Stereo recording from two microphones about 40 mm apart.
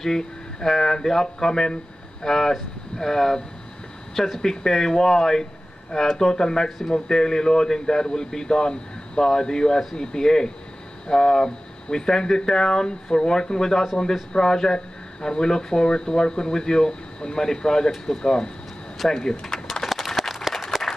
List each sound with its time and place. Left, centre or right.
0.0 s speech: centre
19.1 s a sound: centre
20.2 s applause: centre
20.5 s applause: centre